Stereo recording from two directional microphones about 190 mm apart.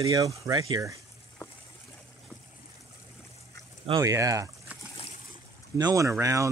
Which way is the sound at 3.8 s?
20° right (ahead or behind).